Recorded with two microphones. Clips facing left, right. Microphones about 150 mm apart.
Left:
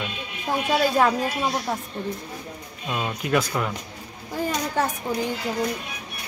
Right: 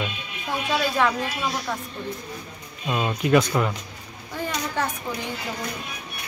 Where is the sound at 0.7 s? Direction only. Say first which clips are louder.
Left 3 dB; 40° left (ahead or behind).